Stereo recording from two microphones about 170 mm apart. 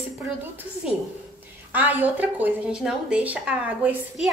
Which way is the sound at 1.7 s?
10° right (ahead or behind).